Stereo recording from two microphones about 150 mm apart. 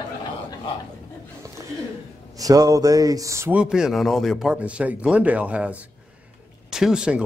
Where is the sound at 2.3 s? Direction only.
25° right (ahead or behind).